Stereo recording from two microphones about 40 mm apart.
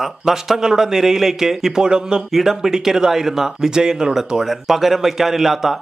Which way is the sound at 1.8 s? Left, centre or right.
Centre.